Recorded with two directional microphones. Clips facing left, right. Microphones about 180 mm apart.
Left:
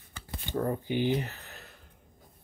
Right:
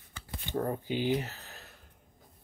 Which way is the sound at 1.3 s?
60° left (ahead or behind).